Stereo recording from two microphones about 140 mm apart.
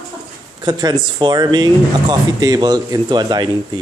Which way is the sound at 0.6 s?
30° right (ahead or behind).